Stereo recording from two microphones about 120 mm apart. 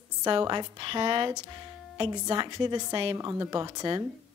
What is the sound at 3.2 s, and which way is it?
Speech, 30° right (ahead or behind).